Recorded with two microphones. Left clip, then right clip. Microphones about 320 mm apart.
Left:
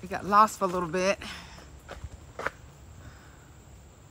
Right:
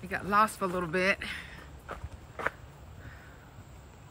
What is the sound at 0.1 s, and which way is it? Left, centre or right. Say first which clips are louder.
Speech: left 5 dB; centre.